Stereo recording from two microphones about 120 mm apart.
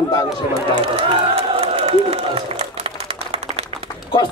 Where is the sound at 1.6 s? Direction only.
60° right (ahead or behind).